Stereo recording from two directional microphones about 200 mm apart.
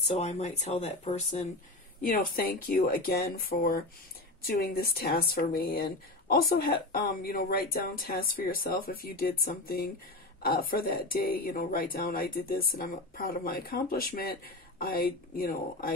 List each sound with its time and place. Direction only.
0.1 s speech: 35° left (ahead or behind)
2.0 s speech: 45° left (ahead or behind)